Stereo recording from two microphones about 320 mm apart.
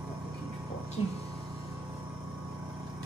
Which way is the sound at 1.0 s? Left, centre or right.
Centre.